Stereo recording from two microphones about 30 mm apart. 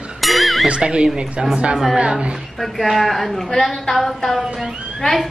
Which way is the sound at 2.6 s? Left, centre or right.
Centre.